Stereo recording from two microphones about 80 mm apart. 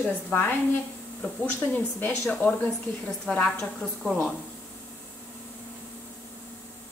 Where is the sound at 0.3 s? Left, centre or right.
Left.